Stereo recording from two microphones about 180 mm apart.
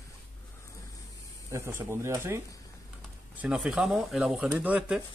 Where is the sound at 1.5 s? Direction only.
15° right (ahead or behind).